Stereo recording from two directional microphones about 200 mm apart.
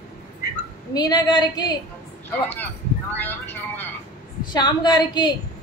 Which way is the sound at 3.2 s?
10° left (ahead or behind).